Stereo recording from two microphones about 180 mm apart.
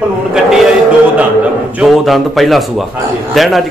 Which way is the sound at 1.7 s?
Centre (ahead or behind).